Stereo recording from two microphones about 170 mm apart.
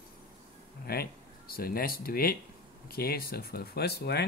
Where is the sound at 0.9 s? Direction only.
65° left (ahead or behind).